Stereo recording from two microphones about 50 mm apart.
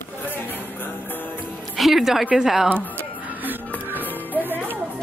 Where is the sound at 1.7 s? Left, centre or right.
Centre.